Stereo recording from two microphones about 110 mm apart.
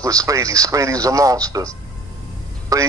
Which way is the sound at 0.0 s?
30° right (ahead or behind).